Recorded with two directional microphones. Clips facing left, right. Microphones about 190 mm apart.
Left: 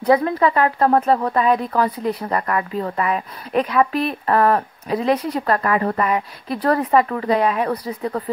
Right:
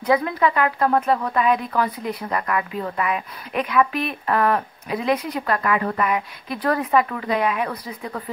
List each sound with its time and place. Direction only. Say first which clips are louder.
0.0 s a woman's voice: left 3 dB; 35° left (ahead or behind)